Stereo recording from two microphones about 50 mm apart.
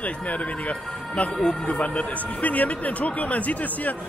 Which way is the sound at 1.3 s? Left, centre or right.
Centre.